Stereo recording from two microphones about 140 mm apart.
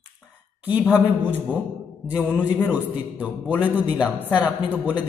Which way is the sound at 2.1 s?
10° right (ahead or behind).